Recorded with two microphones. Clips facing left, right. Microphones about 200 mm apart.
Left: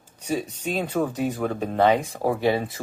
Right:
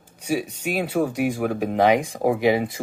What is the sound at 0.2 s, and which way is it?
Speech, 10° right (ahead or behind).